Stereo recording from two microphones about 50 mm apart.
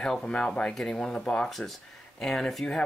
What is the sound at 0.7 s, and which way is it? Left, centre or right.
Speech, centre.